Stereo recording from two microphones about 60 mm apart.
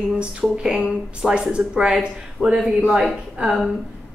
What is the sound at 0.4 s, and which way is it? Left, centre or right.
Speech, centre.